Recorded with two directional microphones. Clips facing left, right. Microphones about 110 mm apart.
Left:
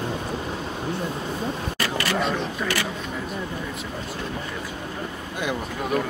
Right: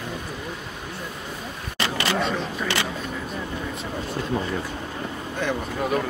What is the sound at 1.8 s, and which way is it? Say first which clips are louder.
Single-lens reflex camera: right 2 dB; 25° right (ahead or behind).